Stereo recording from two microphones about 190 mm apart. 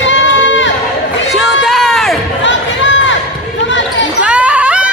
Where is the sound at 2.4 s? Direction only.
75° left (ahead or behind).